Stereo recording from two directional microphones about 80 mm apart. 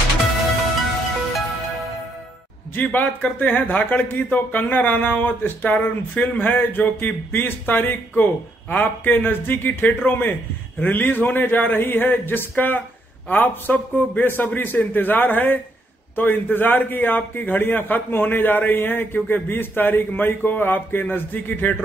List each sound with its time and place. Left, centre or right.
2.7 s speech: left